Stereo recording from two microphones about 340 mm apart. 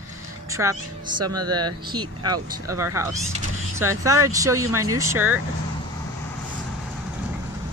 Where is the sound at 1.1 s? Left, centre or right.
Right.